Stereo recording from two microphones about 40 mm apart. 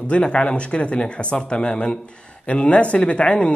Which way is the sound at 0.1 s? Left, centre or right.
Left.